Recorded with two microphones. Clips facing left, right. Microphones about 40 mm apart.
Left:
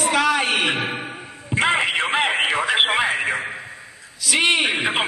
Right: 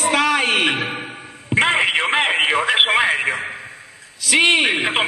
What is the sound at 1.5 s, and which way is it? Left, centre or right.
Radio, centre.